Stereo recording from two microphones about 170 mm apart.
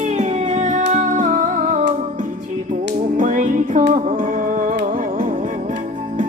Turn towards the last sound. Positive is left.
turn(degrees=-50)  # may be behind; listen again after turning